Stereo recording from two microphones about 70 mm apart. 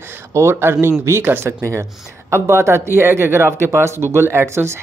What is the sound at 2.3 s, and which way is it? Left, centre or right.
Speech, right.